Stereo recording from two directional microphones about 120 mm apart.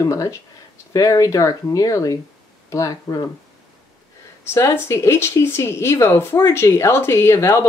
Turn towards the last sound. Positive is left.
turn(degrees=20)  # may be behind; listen again after turning